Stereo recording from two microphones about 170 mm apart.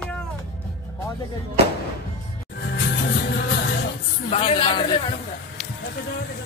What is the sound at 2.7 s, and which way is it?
Music, 70° left (ahead or behind).